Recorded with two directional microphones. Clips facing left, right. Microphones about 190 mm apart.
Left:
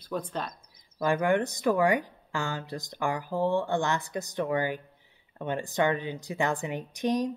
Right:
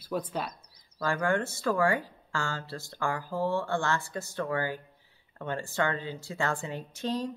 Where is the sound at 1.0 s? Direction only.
20° left (ahead or behind).